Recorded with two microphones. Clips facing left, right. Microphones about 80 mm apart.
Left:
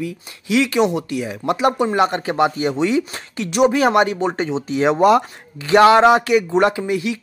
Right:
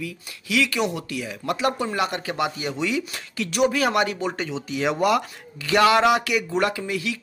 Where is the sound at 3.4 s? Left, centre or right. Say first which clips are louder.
Left 6 dB; left.